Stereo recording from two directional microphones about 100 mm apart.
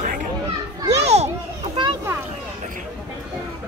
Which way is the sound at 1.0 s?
90° right.